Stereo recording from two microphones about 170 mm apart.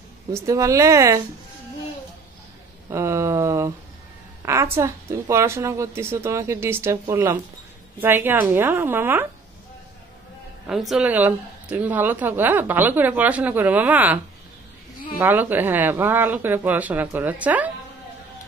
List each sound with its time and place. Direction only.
0.3 s a woman's voice: 20° right (ahead or behind)
2.9 s a woman's voice: 15° right (ahead or behind)
10.7 s a woman's voice: centre (ahead or behind)